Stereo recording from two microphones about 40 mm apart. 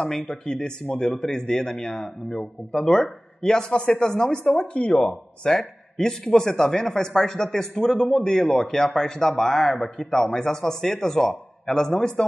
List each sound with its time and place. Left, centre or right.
0.0 s speech: centre
4.6 s speech: left
5.4 s speech: centre